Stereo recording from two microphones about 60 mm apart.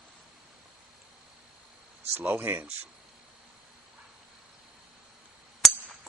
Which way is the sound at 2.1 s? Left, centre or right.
Right.